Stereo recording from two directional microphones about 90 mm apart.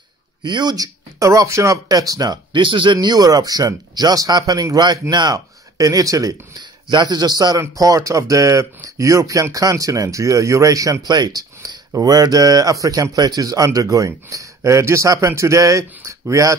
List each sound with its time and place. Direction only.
0.4 s speech: 55° right (ahead or behind)
1.2 s speech: 40° right (ahead or behind)
2.5 s speech: 65° right (ahead or behind); by 6.3 s 40° right (ahead or behind)
6.6 s speech: 55° right (ahead or behind); by 16.5 s 35° right (ahead or behind)